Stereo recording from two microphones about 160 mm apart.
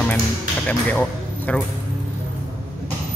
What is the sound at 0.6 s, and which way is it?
Speech, 10° left (ahead or behind).